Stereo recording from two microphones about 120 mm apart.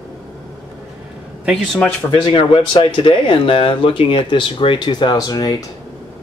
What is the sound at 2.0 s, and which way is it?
Speech, 45° left (ahead or behind).